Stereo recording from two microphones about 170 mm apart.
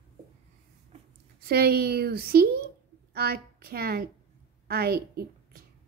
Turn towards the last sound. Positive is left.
turn(degrees=-65)  # may be behind; listen again after turning